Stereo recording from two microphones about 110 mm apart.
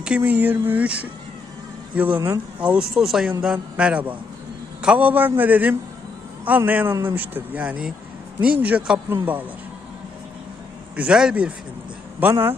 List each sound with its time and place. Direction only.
0.0 s a man's voice: 15° right (ahead or behind)
11.0 s a man's voice: 10° right (ahead or behind)
12.2 s speech: 20° right (ahead or behind)